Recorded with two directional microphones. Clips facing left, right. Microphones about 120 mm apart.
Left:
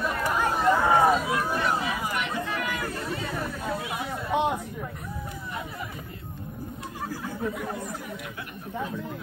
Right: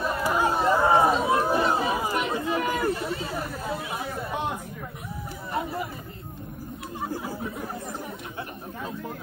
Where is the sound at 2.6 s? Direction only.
30° right (ahead or behind).